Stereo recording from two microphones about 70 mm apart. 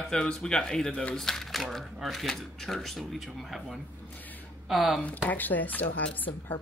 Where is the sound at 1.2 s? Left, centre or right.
Centre.